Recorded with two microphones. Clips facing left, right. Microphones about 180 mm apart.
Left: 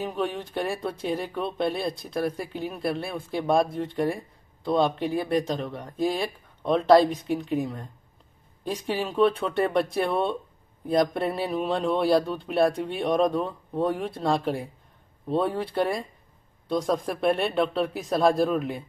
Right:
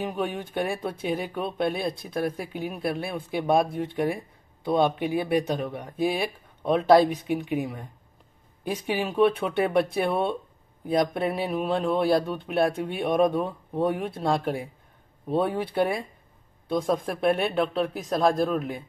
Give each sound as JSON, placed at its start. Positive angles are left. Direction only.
{"t": 0.0, "sound": "a man's voice", "side_deg": -5}